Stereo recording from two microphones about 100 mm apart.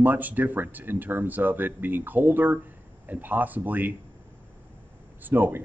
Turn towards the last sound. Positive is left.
turn(degrees=-20)  # may be behind; listen again after turning